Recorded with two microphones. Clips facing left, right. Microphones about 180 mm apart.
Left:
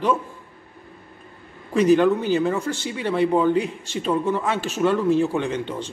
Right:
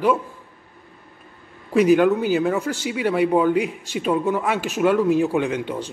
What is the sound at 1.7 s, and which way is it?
Speech, 10° right (ahead or behind).